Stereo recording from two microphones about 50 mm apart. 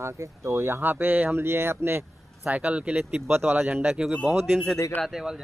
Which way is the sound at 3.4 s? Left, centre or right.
Right.